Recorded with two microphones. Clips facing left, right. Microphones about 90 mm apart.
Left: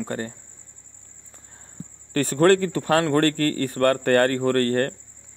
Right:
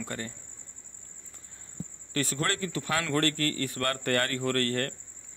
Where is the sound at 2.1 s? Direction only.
45° left (ahead or behind).